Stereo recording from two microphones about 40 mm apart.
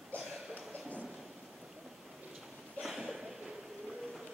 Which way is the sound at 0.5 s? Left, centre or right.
Right.